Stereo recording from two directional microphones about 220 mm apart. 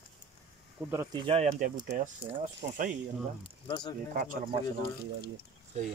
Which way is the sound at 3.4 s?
20° left (ahead or behind).